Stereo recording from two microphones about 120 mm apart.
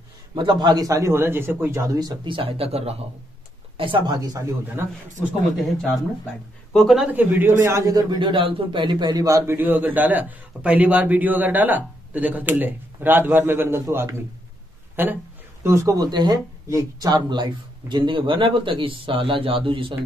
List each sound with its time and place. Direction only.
0.3 s a man's voice: 40° right (ahead or behind)
4.1 s a man's voice: 30° right (ahead or behind)
6.7 s speech: centre (ahead or behind)
7.1 s a man's voice: 15° right (ahead or behind)
9.6 s a man's voice: 15° right (ahead or behind)
15.6 s speech: 25° right (ahead or behind); by 20.0 s 45° right (ahead or behind)